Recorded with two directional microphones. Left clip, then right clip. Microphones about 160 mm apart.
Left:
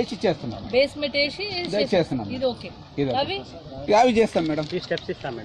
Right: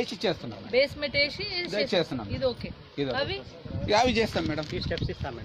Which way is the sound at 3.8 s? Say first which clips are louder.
Left 6 dB; 40° left (ahead or behind).